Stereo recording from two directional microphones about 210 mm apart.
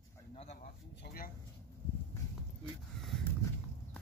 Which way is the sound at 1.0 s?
45° left (ahead or behind).